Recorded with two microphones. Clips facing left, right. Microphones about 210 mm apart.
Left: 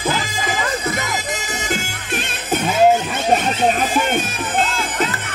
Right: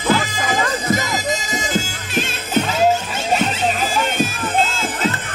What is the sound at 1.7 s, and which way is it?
Music, 60° left (ahead or behind).